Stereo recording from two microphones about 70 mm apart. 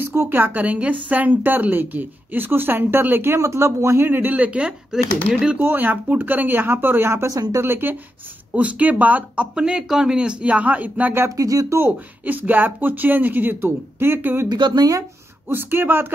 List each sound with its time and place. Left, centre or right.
0.0 s a woman's voice: right
3.3 s a woman's voice: right; by 5.6 s centre
5.6 s a woman's voice: right
7.3 s speech: right
7.6 s speech: right
8.5 s a woman's voice: right
11.2 s speech: right
12.3 s a woman's voice: right
14.5 s speech: right
15.4 s speech: right